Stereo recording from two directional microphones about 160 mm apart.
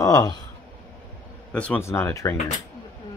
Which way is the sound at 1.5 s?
10° left (ahead or behind).